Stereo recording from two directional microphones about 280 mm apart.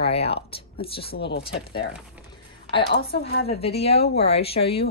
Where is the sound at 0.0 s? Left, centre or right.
Left.